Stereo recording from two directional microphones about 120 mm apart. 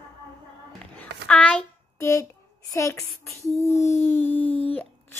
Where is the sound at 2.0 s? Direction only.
25° left (ahead or behind).